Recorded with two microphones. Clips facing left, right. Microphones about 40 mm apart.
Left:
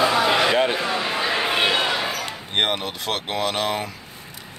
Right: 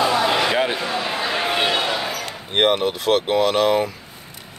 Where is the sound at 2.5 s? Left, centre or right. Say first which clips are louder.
Right 5 dB; centre.